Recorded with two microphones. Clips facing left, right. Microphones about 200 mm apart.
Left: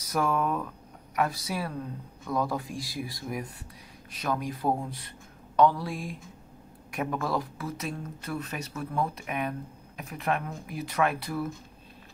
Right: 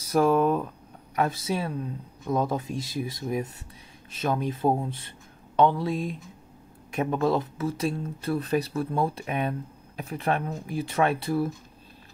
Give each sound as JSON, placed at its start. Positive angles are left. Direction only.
{"t": 0.0, "sound": "speech", "side_deg": -30}